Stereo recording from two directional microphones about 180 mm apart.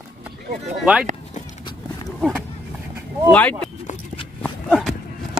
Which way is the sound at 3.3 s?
5° left (ahead or behind).